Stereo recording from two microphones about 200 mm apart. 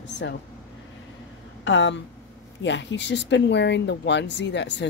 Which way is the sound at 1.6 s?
70° left (ahead or behind).